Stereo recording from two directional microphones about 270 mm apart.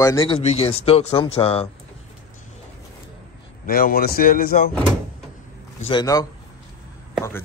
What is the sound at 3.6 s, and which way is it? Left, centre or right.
A man's voice, left.